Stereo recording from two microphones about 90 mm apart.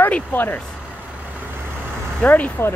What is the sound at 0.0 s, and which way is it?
Speech, 20° left (ahead or behind).